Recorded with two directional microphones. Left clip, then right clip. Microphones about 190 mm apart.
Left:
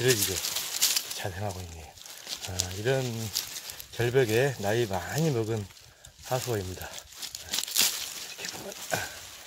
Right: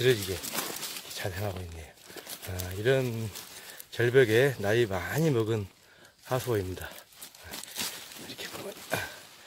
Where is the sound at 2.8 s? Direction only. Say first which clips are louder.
Right 3 dB; 20° right (ahead or behind).